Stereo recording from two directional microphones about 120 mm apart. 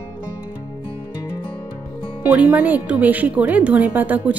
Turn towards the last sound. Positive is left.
turn(degrees=-15)  # may be behind; listen again after turning